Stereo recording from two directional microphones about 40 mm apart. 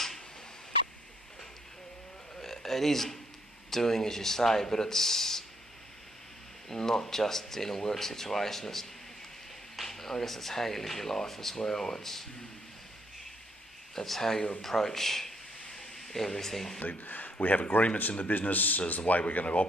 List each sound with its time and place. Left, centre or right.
2.4 s a sound: centre
3.7 s speech: centre
6.7 s speech: centre
13.9 s a man's voice: centre
16.8 s a man's voice: left